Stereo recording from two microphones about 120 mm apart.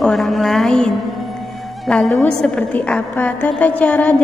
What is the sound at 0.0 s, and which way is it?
A woman's voice, centre (ahead or behind).